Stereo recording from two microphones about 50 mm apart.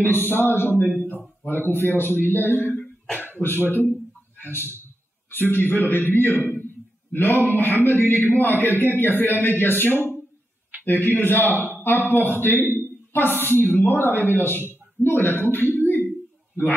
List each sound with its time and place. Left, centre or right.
0.0 s a man's voice: left
6.3 s a man's voice: right
7.2 s a man's voice: left
15.8 s a sound: left